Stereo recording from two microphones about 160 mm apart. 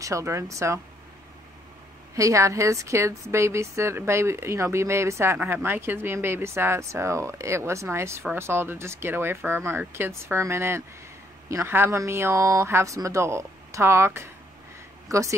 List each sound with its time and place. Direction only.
0.0 s speech: 20° right (ahead or behind)
2.1 s a woman's voice: 20° right (ahead or behind)